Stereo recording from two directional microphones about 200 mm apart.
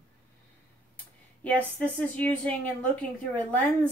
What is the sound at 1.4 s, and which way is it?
A woman's voice, 10° left (ahead or behind).